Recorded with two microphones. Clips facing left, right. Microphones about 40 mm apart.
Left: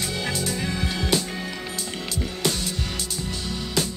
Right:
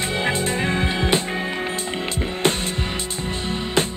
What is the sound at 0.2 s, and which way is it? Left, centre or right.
Music, right.